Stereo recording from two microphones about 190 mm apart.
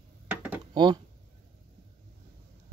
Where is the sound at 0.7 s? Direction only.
25° right (ahead or behind).